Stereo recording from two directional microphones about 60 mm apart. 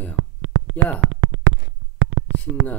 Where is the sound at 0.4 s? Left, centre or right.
Right.